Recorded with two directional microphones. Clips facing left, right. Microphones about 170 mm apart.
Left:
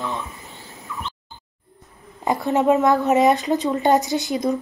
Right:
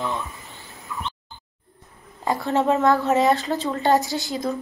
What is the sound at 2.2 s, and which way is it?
Speech, 20° left (ahead or behind).